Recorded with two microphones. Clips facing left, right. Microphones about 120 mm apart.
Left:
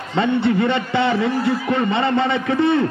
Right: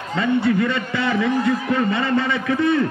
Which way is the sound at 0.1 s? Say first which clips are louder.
Left 1 dB; 25° left (ahead or behind).